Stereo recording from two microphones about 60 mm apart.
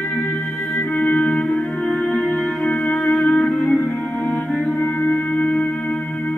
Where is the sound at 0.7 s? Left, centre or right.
Left.